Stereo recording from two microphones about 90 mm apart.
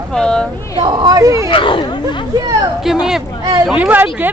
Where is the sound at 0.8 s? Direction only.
55° right (ahead or behind).